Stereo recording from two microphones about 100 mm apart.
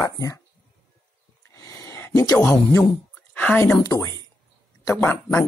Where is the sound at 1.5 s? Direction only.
35° left (ahead or behind).